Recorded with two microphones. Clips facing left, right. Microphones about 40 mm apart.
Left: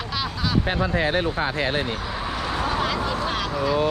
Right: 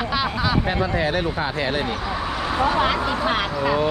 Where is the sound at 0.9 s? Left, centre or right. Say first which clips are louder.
Left 2 dB; left.